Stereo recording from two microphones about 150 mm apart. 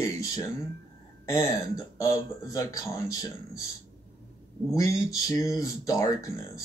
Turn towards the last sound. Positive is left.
turn(degrees=25)  # may be behind; listen again after turning